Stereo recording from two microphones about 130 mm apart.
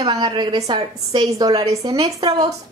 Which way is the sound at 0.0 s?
35° right (ahead or behind).